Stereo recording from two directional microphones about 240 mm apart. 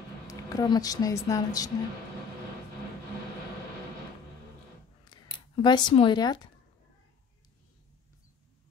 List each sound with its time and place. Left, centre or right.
0.3 s a woman's voice: centre
5.1 s speech: centre